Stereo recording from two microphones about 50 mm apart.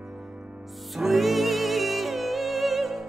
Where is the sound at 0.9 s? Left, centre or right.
Centre.